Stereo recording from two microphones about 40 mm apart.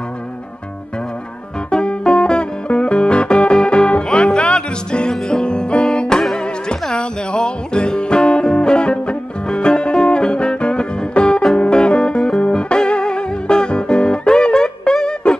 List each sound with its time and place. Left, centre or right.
1.7 s music: left